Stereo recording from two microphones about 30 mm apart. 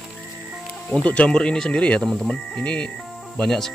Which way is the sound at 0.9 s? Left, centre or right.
Left.